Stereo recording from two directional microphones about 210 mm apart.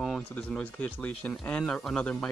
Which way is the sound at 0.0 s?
Centre (ahead or behind).